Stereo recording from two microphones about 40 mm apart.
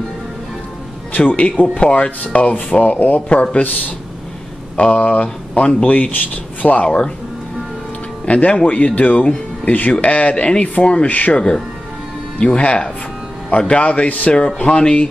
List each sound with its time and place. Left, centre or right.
1.1 s a man's voice: left
6.1 s speech: left
8.3 s a man's voice: left
11.1 s a man's voice: left
12.4 s speech: left